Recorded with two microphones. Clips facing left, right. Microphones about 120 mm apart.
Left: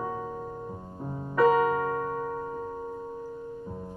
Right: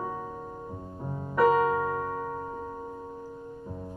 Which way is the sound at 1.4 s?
15° right (ahead or behind).